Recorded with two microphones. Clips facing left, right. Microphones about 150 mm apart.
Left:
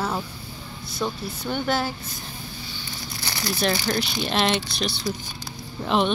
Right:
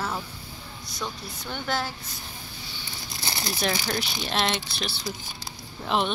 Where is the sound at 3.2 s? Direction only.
25° right (ahead or behind).